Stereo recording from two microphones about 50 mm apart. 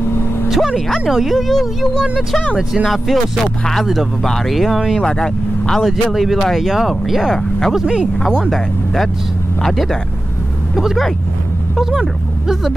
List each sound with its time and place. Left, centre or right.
0.7 s speech: centre
4.9 s speech: centre
6.1 s speech: centre
7.2 s speech: centre
7.7 s speech: centre
8.2 s speech: centre
11.8 s speech: centre